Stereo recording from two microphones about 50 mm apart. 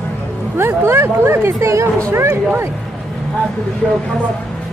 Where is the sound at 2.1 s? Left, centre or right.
Right.